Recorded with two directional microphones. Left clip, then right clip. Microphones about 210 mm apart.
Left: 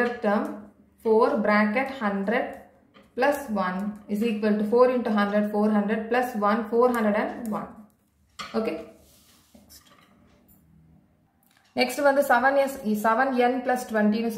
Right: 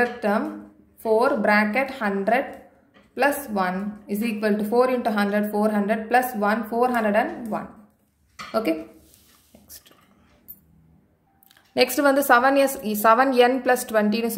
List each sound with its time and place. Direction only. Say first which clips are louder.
1.0 s a woman's voice: right 2 dB; 55° right (ahead or behind)
11.7 s a woman's voice: right 3 dB; 40° right (ahead or behind)